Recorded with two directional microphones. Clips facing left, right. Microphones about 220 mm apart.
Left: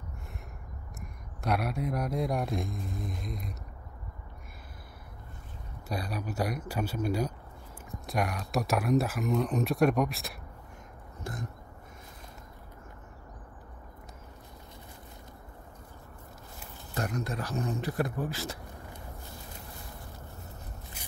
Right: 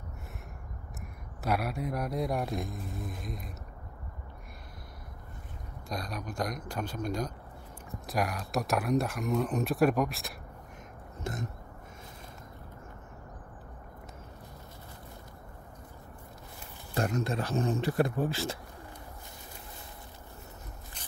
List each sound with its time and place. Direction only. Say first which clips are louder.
1.4 s speech: left 1 dB; centre (ahead or behind)
5.9 s speech: left 2 dB; 5° left (ahead or behind)
11.3 s speech: right 3 dB; 25° right (ahead or behind)
16.9 s speech: right 3 dB; 25° right (ahead or behind)